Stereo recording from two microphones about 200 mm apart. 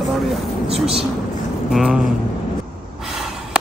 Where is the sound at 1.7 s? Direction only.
Centre (ahead or behind).